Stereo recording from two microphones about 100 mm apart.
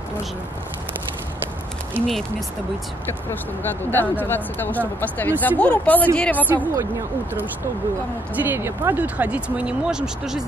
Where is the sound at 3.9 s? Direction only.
20° left (ahead or behind).